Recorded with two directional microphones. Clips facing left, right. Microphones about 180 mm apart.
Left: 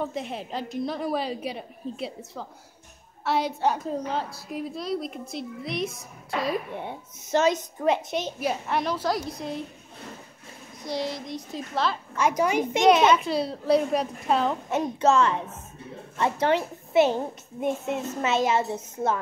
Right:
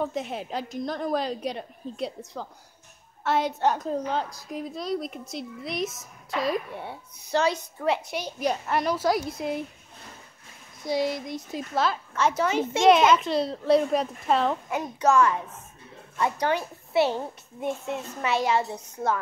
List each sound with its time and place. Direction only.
0.0 s a woman's voice: centre (ahead or behind)
6.7 s a child's voice: 20° left (ahead or behind)
8.4 s a woman's voice: centre (ahead or behind)
11.5 s a woman's voice: 5° right (ahead or behind)
12.2 s speech: 15° left (ahead or behind)
12.8 s a woman's voice: centre (ahead or behind)
14.7 s a child's voice: 25° left (ahead or behind)